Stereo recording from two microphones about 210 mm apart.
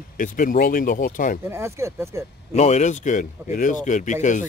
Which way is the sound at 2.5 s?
35° left (ahead or behind).